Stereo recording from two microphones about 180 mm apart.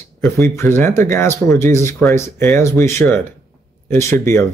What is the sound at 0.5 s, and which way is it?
Speech, 15° left (ahead or behind).